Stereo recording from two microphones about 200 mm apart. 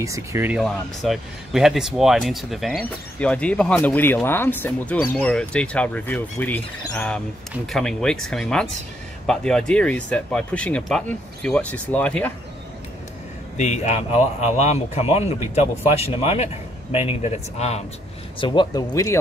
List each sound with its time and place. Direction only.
0.0 s speech: 15° right (ahead or behind); by 12.3 s 5° left (ahead or behind)
13.6 s speech: 35° left (ahead or behind); by 19.1 s 15° left (ahead or behind)